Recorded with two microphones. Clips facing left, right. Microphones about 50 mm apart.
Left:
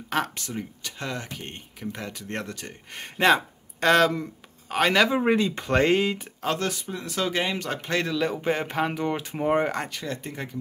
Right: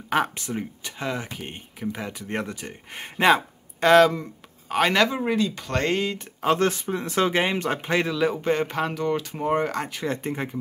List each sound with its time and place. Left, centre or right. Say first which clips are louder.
0.1 s speech: right 4 dB; centre
5.2 s speech: left 2 dB; left; by 6.3 s centre
6.6 s speech: right 6 dB; right
8.1 s speech: right 2 dB; centre
8.4 s speech: right 2 dB; centre
8.9 s speech: right 2 dB; centre
10.0 s speech: right 5 dB; right